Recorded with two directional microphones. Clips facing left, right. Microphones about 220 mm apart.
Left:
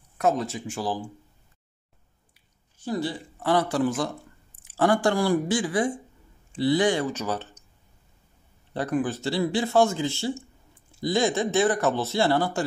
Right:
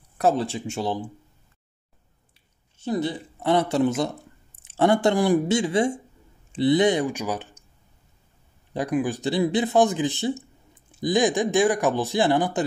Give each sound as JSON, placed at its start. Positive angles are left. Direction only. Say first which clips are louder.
{"t": 0.2, "sound": "speech", "louder": "right 2 dB", "side_deg": -30}
{"t": 2.8, "sound": "a man's voice", "louder": "right 3 dB", "side_deg": -20}
{"t": 8.7, "sound": "a man's voice", "louder": "right 2 dB", "side_deg": -15}